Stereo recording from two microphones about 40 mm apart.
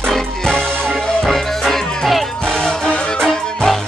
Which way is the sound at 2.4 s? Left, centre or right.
Left.